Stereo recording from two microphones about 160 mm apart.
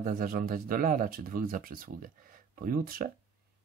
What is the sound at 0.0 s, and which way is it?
Speech, 60° right (ahead or behind).